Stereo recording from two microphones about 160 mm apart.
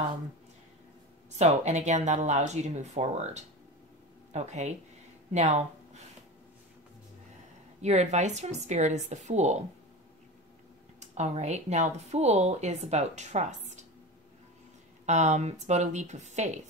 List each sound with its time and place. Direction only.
1.4 s speech: 45° right (ahead or behind)
7.8 s speech: 45° right (ahead or behind)
11.0 s speech: 45° right (ahead or behind)
15.0 s speech: 45° right (ahead or behind)